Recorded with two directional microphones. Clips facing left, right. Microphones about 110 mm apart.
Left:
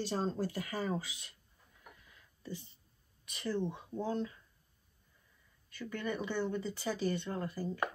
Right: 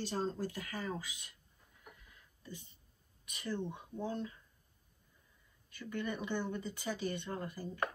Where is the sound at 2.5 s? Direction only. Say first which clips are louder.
Left 6 dB; 50° right (ahead or behind).